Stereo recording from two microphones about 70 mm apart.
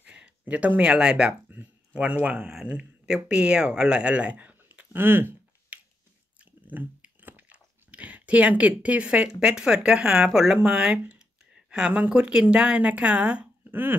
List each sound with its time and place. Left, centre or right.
0.0 s speech: centre
4.9 s a sound: right
6.7 s chewing: right
9.3 s speech: centre
13.7 s speech: right